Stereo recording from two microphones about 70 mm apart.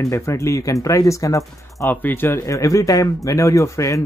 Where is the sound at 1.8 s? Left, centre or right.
Left.